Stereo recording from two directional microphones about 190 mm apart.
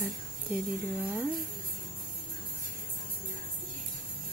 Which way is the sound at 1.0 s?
10° right (ahead or behind).